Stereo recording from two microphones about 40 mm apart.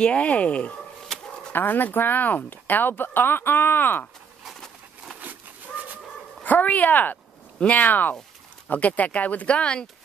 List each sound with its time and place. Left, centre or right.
0.0 s speech: left
1.1 s dog: centre
1.5 s speech: left
6.4 s speech: left
7.6 s speech: left
7.9 s speech: left